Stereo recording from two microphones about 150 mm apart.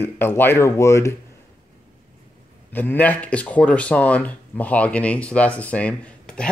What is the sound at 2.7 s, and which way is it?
Speech, 10° left (ahead or behind).